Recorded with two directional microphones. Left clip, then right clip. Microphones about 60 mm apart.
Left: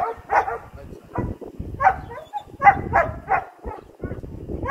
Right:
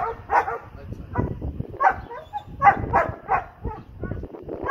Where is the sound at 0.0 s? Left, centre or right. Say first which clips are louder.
Left 1 dB; left.